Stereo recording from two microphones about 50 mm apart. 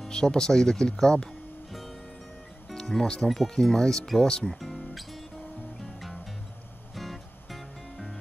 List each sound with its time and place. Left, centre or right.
0.1 s speech: centre
2.7 s speech: centre
4.6 s music: centre